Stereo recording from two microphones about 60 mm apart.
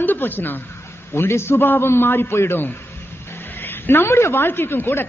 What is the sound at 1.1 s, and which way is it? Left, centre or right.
A man's voice, left.